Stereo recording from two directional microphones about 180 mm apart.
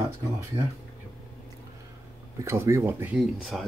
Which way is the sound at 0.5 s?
30° right (ahead or behind).